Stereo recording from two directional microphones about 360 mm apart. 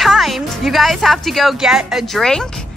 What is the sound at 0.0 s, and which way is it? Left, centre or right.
A woman's voice, centre.